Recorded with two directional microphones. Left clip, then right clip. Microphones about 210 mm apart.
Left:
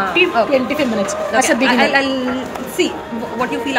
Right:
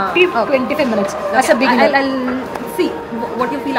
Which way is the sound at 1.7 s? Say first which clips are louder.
Right 1 dB; 15° left (ahead or behind).